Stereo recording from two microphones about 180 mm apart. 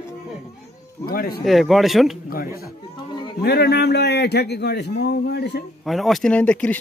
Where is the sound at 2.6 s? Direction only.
25° left (ahead or behind).